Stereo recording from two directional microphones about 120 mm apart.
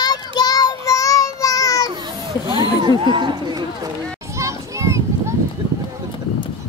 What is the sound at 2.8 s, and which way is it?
Speech, 40° right (ahead or behind).